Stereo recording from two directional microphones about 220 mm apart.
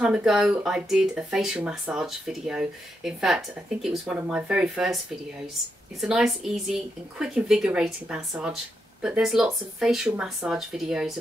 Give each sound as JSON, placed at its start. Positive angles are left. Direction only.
{"t": 0.0, "sound": "speech", "side_deg": -5}
{"t": 5.9, "sound": "speech", "side_deg": 0}